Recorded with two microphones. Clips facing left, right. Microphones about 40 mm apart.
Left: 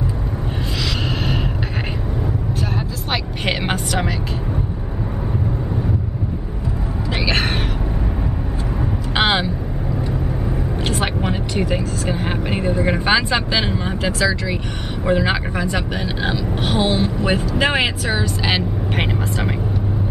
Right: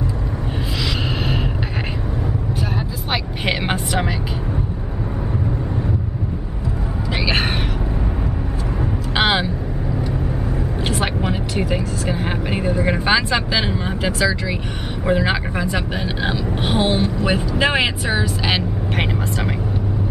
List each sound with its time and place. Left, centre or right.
3.1 s vehicle: centre
7.2 s a sound: centre
9.1 s vehicle: centre
10.9 s vehicle: centre
13.5 s speech: centre
17.0 s speech: centre